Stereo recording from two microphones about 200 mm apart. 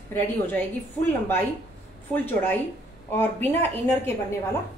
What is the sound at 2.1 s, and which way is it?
A woman's voice, 10° left (ahead or behind).